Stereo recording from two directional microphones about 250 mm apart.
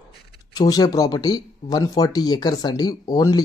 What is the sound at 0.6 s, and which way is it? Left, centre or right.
Speech, centre.